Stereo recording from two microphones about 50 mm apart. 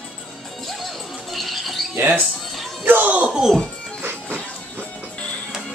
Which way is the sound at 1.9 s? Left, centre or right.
Right.